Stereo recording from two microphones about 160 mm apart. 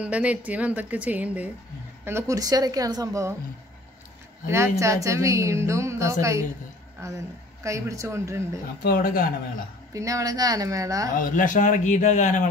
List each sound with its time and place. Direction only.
0.0 s a woman's voice: 10° right (ahead or behind)
4.5 s a woman's voice: 20° right (ahead or behind)
8.8 s speech: 65° left (ahead or behind)
9.9 s a woman's voice: 20° right (ahead or behind)
11.1 s a man's voice: 55° left (ahead or behind)